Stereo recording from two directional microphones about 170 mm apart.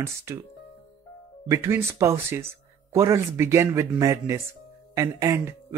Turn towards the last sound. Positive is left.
turn(degrees=-15)  # may be behind; listen again after turning